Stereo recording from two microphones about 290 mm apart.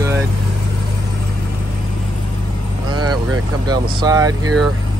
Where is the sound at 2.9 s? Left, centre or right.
Centre.